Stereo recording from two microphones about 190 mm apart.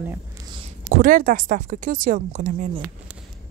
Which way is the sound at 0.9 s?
45° right (ahead or behind).